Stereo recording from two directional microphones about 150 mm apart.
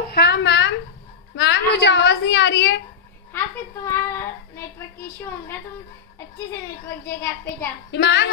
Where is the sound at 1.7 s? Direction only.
90° left.